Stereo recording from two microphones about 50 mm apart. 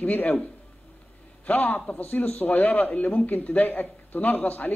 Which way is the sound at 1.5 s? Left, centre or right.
Left.